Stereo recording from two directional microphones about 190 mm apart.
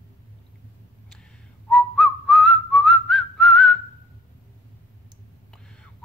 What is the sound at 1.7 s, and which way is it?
Whistling, centre (ahead or behind).